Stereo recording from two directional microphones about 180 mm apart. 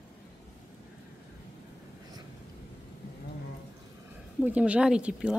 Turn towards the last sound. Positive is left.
turn(degrees=-5)  # may be behind; listen again after turning